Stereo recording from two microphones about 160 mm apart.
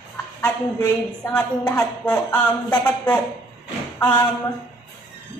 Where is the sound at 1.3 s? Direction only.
5° left (ahead or behind).